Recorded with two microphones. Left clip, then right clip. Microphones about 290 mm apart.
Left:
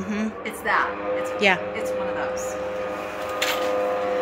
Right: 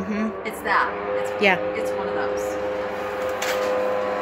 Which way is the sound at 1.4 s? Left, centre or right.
Centre.